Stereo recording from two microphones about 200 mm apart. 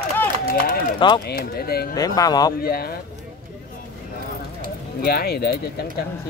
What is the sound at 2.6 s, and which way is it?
Speech, 50° left (ahead or behind).